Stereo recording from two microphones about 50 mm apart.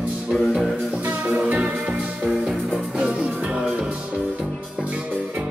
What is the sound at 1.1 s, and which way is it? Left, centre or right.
Music, right.